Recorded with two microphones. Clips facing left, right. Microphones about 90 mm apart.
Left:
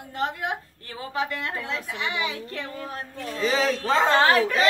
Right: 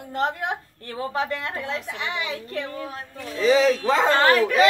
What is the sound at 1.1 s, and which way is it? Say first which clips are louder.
A woman's voice: even; 35° right (ahead or behind).